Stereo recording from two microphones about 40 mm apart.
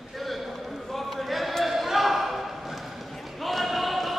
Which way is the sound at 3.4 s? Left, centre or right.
Centre.